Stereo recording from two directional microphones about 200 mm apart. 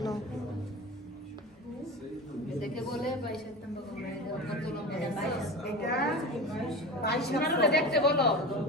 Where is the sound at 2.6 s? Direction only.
Centre (ahead or behind).